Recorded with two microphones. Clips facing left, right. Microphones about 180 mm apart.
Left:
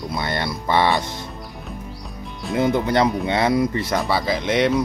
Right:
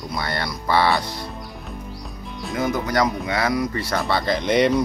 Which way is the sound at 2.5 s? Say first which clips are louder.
Left 4 dB; 25° left (ahead or behind).